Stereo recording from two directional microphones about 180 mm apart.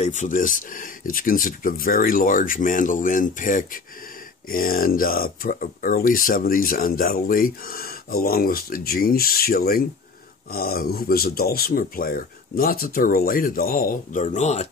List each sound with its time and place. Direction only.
0.0 s speech: 45° left (ahead or behind)